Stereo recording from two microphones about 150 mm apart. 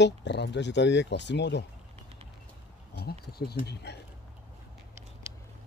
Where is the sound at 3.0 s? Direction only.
90° left.